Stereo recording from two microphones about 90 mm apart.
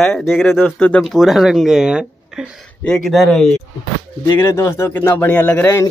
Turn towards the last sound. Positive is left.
turn(degrees=25)  # may be behind; listen again after turning